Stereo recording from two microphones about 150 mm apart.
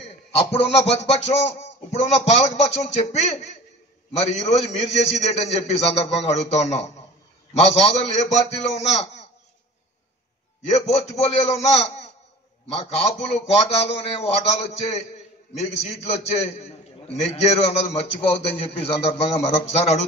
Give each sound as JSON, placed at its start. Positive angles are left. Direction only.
{"t": 0.0, "sound": "a man's voice", "side_deg": 40}
{"t": 10.7, "sound": "a man's voice", "side_deg": 45}